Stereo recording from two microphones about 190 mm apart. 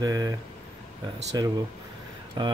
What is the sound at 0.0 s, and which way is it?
Speech, 20° right (ahead or behind).